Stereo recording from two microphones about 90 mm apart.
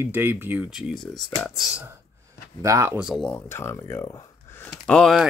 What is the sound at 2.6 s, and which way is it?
Speech, 35° right (ahead or behind).